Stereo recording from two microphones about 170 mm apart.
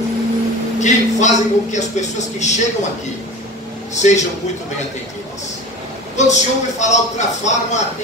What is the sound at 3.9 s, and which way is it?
Speech, 45° left (ahead or behind).